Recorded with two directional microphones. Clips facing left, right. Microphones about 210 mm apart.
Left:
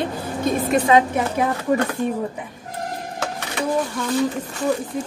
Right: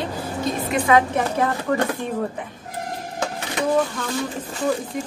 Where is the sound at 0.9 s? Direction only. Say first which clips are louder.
Left 1 dB; 25° left (ahead or behind).